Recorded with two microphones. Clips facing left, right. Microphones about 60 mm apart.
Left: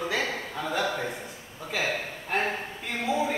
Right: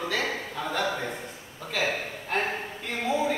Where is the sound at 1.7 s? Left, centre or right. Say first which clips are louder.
Right 1 dB; centre.